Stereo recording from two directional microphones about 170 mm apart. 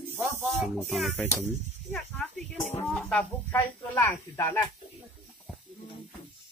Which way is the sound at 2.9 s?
Centre (ahead or behind).